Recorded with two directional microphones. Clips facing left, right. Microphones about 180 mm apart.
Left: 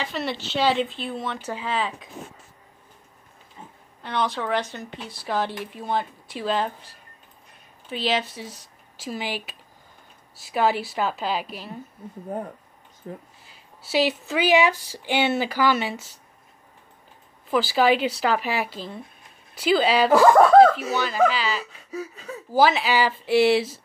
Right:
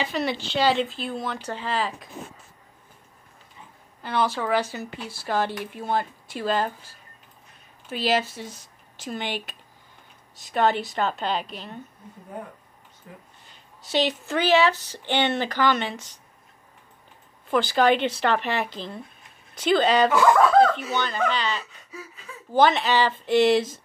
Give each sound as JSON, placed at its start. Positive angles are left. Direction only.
{"t": 0.1, "sound": "speech", "side_deg": 0}
{"t": 4.0, "sound": "speech", "side_deg": -5}
{"t": 7.9, "sound": "speech", "side_deg": 0}
{"t": 13.0, "sound": "speech", "side_deg": 35}
{"t": 13.5, "sound": "speech", "side_deg": 5}
{"t": 17.5, "sound": "speech", "side_deg": 5}
{"t": 20.1, "sound": "speech", "side_deg": 35}
{"t": 20.9, "sound": "speech", "side_deg": 5}
{"t": 21.9, "sound": "speech", "side_deg": 40}
{"t": 22.5, "sound": "speech", "side_deg": 5}